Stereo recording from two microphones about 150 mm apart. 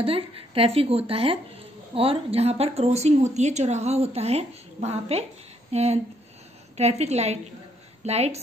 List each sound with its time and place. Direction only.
0.0 s a woman's voice: 40° right (ahead or behind)